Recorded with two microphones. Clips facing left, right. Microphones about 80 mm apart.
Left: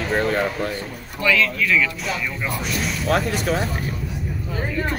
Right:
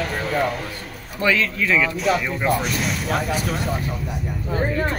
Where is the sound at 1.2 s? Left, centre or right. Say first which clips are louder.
Even; right.